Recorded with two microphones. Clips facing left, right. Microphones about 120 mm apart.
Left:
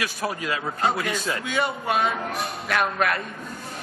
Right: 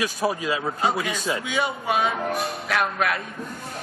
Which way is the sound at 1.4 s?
Centre (ahead or behind).